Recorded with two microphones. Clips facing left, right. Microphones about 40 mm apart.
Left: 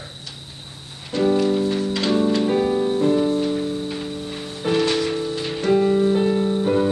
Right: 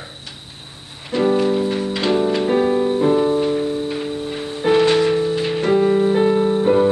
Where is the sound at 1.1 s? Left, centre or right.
Centre.